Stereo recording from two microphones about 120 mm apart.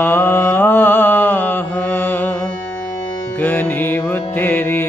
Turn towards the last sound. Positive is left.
turn(degrees=20)  # may be behind; listen again after turning